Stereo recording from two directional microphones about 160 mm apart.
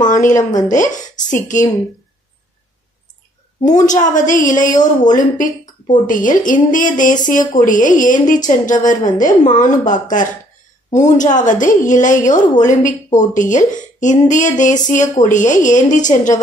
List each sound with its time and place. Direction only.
0.1 s a woman's voice: 50° left (ahead or behind)
3.6 s a woman's voice: 50° left (ahead or behind)